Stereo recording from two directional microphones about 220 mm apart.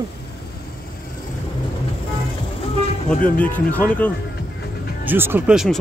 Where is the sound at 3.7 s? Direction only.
5° left (ahead or behind).